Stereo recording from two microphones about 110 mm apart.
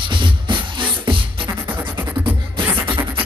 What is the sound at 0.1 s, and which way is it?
Music, 50° right (ahead or behind).